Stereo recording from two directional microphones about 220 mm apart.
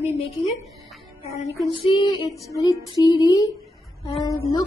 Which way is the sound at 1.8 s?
25° left (ahead or behind).